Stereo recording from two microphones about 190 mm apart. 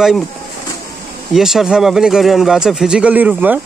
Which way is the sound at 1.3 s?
Centre (ahead or behind).